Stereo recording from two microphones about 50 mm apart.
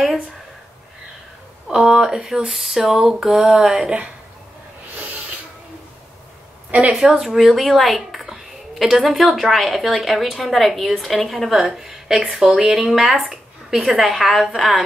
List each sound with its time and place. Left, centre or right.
1.7 s speech: centre
6.9 s speech: centre
12.4 s speech: right
12.9 s speech: centre